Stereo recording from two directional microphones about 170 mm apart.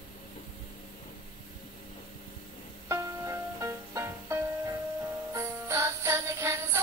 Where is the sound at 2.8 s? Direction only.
15° right (ahead or behind).